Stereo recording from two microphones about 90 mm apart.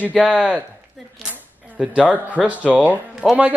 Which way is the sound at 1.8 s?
10° right (ahead or behind).